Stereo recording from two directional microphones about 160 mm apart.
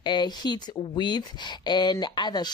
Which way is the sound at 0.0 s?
25° left (ahead or behind).